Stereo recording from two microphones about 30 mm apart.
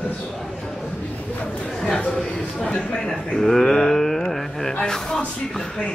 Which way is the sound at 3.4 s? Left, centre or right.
Centre.